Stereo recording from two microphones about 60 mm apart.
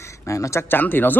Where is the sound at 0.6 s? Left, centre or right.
Left.